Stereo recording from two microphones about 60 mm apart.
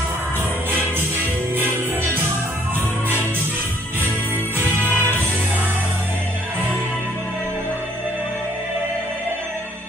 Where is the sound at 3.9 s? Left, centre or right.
Right.